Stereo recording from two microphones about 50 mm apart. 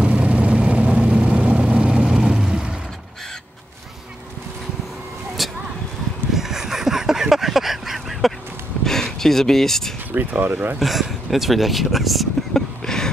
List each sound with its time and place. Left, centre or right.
0.0 s vehicle: right
5.4 s vehicle: centre
6.3 s a sound: centre
8.8 s speech: centre
10.1 s speech: right
10.8 s speech: centre
12.5 s a sound: centre